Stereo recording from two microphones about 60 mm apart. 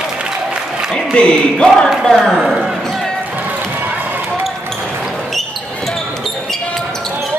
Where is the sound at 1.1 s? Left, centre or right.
Centre.